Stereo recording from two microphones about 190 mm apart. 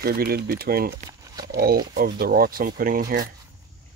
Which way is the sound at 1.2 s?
20° right (ahead or behind).